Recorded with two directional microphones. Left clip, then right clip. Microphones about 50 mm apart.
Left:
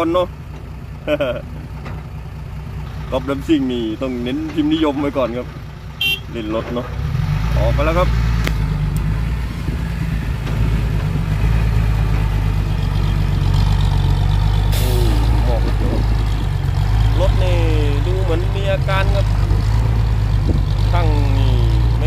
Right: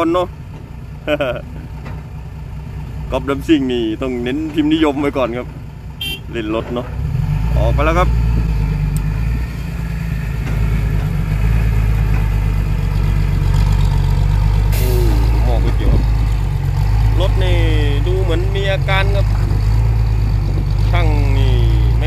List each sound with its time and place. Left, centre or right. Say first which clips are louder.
0.0 s speech: right 1 dB; centre
1.0 s speech: right 1 dB; centre
3.1 s speech: right 2 dB; centre
7.3 s vehicle: right 1 dB; centre
7.8 s speech: right 2 dB; centre
8.1 s vehicle: left 2 dB; right
10.5 s vehicle: even; centre
17.4 s vehicle: right 1 dB; left
18.0 s vehicle: right 3 dB; right
18.3 s vehicle: even; left
19.0 s vehicle: right 1 dB; centre